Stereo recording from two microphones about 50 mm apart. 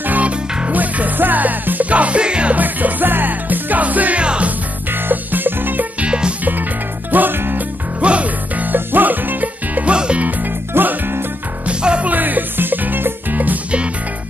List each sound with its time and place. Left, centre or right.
0.0 s music: right
2.5 s music: right
4.5 s music: right
5.9 s music: right
7.1 s music: right
8.0 s music: right
9.8 s music: right
10.7 s music: right
11.6 s music: right
12.1 s music: right